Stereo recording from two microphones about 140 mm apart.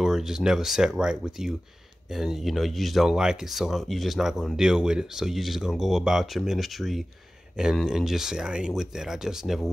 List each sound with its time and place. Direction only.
0.0 s speech: 5° right (ahead or behind)